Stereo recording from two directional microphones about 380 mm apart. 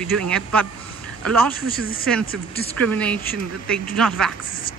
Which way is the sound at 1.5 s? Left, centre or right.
Left.